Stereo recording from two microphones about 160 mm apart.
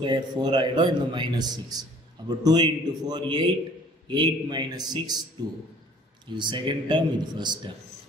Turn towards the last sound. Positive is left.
turn(degrees=-30)  # may be behind; listen again after turning